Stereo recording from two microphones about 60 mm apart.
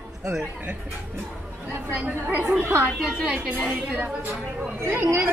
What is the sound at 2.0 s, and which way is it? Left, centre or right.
Speech, right.